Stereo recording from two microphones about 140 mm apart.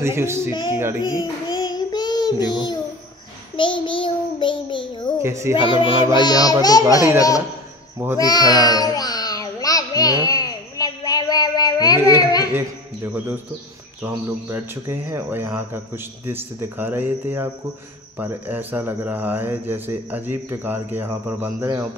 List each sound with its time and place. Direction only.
0.0 s speech: 20° right (ahead or behind)
0.5 s a child's voice: 35° left (ahead or behind)
1.0 s child singing: 30° left (ahead or behind)
3.5 s a child's voice: 35° left (ahead or behind)
5.2 s speech: 20° right (ahead or behind)
5.6 s a child's voice: 40° left (ahead or behind)
6.1 s speech: 30° left (ahead or behind)
8.2 s a sound: 30° left (ahead or behind)
12.5 s speech: 15° right (ahead or behind)